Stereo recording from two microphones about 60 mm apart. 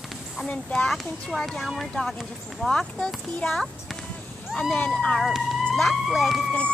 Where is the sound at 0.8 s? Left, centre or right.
Centre.